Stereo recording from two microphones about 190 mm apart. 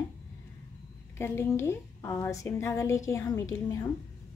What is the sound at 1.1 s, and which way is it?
A woman's voice, 15° left (ahead or behind).